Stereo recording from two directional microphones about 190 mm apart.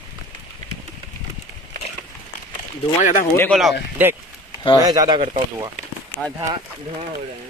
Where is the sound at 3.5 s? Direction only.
Centre (ahead or behind).